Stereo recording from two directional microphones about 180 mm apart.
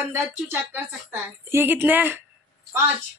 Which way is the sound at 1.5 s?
10° right (ahead or behind).